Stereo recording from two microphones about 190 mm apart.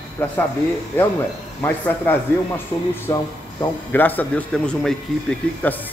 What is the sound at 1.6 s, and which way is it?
Speech, 10° left (ahead or behind).